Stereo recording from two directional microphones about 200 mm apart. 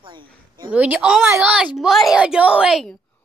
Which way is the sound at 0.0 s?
25° right (ahead or behind).